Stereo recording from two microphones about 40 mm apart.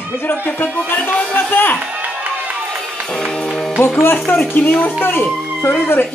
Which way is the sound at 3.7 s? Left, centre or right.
Left.